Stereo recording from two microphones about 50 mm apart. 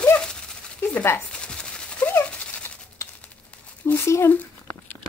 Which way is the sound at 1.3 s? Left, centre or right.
Centre.